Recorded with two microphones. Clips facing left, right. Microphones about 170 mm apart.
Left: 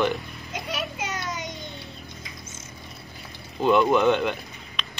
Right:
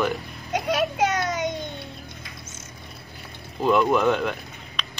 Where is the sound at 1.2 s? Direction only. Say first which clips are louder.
Right 7 dB; centre (ahead or behind).